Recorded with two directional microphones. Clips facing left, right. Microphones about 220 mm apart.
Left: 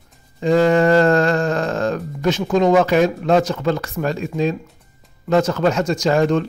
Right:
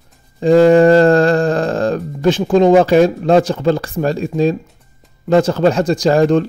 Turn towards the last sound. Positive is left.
turn(degrees=-35)  # may be behind; listen again after turning